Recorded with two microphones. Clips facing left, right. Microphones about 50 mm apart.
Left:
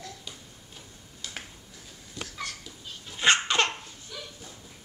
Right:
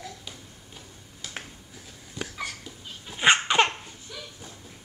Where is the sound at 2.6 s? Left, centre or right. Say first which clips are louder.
Right 1 dB; centre.